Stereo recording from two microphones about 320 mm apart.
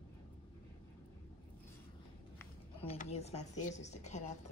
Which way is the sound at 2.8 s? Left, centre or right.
Centre.